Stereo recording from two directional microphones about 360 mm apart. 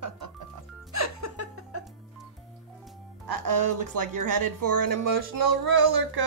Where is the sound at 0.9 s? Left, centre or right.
Right.